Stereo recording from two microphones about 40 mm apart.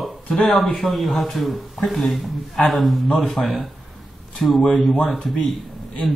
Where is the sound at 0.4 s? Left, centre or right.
Centre.